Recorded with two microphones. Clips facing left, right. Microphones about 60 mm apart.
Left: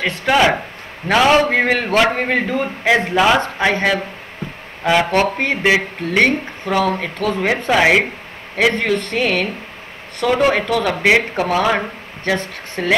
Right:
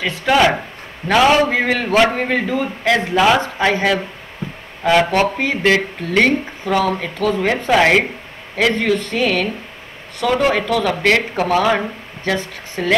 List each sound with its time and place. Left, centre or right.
0.0 s a man's voice: centre
3.0 s a man's voice: centre
12.8 s a man's voice: centre